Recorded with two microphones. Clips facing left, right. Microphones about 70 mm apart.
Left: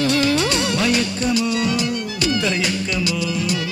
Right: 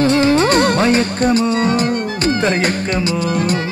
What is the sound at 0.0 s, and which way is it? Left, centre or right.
Music, right.